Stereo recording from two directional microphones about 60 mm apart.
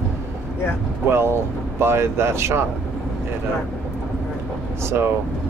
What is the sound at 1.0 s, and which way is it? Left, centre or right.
Speech, right.